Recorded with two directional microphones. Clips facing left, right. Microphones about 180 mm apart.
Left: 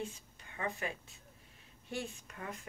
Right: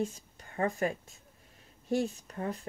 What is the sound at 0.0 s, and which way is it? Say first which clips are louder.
Speech: right 8 dB; 45° right (ahead or behind).